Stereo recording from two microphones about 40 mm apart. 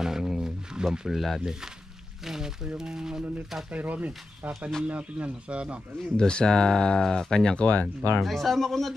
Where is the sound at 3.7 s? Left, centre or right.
Right.